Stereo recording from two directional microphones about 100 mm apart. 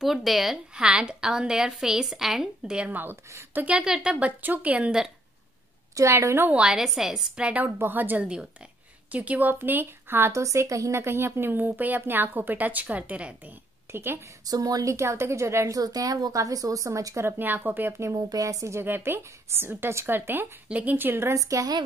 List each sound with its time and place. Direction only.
0.0 s a woman's voice: centre (ahead or behind); by 3.6 s 25° right (ahead or behind)
3.6 s a woman's voice: 10° right (ahead or behind)
5.9 s a woman's voice: 30° right (ahead or behind)
6.5 s a woman's voice: 5° right (ahead or behind); by 14.2 s 25° right (ahead or behind)
14.4 s a woman's voice: 40° right (ahead or behind)